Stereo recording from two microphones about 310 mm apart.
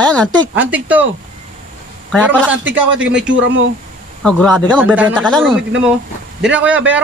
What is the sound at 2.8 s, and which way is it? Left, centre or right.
Speech, right.